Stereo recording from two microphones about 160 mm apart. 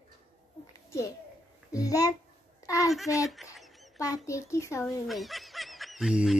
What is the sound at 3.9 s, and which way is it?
Speech, 20° left (ahead or behind).